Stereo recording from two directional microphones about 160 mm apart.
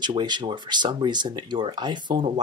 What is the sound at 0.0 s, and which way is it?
Speech, 30° right (ahead or behind).